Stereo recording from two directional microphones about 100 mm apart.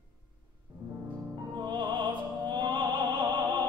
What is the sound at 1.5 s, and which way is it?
Opera, 50° right (ahead or behind).